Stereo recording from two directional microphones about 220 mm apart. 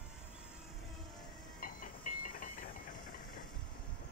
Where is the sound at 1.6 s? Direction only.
40° left (ahead or behind).